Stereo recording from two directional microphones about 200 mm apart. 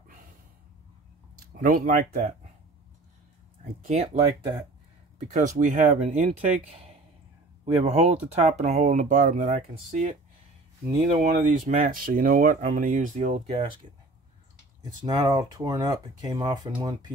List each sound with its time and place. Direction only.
1.5 s speech: 45° right (ahead or behind)
3.8 s speech: 35° right (ahead or behind)
5.3 s speech: 40° right (ahead or behind)
7.6 s speech: 35° right (ahead or behind)
11.2 s speech: 40° right (ahead or behind)
15.0 s speech: 20° right (ahead or behind)